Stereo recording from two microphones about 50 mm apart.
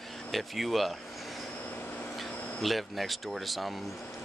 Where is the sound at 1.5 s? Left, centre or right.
Left.